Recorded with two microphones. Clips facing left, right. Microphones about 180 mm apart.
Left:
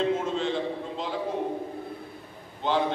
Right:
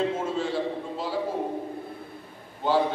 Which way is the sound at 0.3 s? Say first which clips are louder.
Even; 5° right (ahead or behind).